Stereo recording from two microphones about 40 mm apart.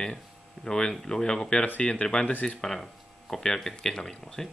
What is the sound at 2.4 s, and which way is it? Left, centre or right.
Speech, centre.